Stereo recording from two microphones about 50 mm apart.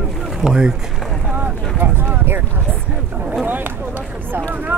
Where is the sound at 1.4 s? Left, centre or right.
Right.